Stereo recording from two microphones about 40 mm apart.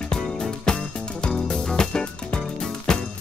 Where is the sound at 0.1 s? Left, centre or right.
Centre.